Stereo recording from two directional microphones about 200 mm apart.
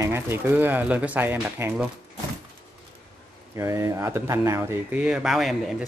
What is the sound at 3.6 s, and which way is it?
Speech, 15° right (ahead or behind).